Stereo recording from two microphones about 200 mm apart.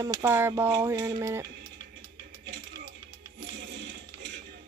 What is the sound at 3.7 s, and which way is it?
Music, 60° right (ahead or behind).